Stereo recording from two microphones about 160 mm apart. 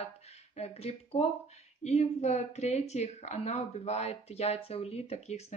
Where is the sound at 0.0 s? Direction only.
40° left (ahead or behind).